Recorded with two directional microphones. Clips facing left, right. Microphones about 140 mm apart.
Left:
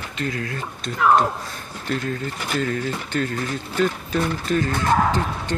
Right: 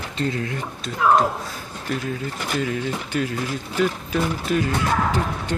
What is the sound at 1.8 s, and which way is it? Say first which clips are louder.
Speech: left 1 dB; 5° right (ahead or behind).